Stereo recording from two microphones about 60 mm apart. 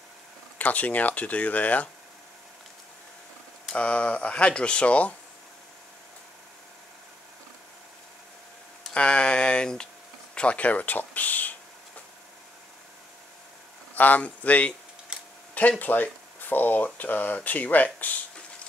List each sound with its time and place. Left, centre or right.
0.6 s speech: left
3.7 s speech: centre
8.9 s speech: centre
13.9 s speech: left
15.1 s tick-tock: centre
15.8 s speech: left